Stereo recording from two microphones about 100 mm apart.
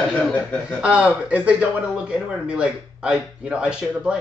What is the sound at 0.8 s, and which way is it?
A man's voice, 10° right (ahead or behind).